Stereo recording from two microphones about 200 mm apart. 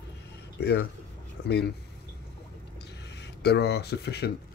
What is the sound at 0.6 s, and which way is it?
Speech, 55° left (ahead or behind).